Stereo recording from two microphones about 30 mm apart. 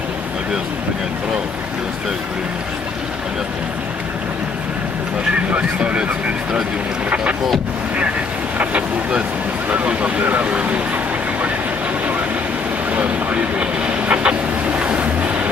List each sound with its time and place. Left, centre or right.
5.6 s speech: right
8.5 s speech: right
10.1 s speech: right
10.5 s speech: right
12.9 s vehicle: right
14.1 s boat: right